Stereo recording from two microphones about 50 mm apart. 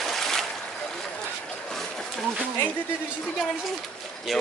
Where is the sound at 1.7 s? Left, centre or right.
Centre.